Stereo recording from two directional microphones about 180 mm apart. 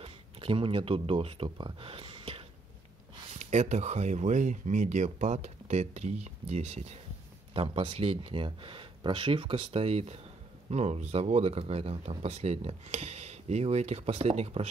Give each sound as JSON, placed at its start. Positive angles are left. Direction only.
{"t": 0.0, "sound": "speech", "side_deg": -30}
{"t": 3.3, "sound": "speech", "side_deg": -40}